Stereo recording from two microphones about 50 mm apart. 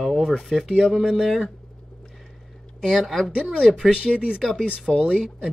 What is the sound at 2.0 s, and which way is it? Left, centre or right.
Boat, centre.